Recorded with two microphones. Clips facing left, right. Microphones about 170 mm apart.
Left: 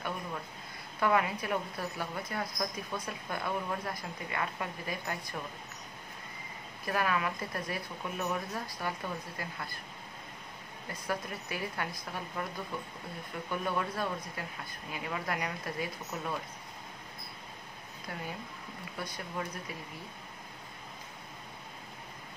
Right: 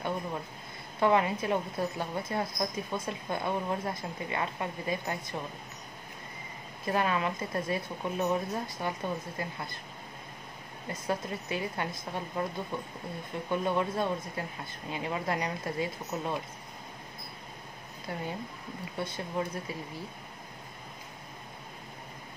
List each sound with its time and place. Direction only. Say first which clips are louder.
0.9 s a woman's voice: right 3 dB; 25° right (ahead or behind)
6.9 s a woman's voice: right 3 dB; 25° right (ahead or behind)
10.9 s a woman's voice: right 4 dB; 25° right (ahead or behind)
18.9 s a woman's voice: right 5 dB; 25° right (ahead or behind)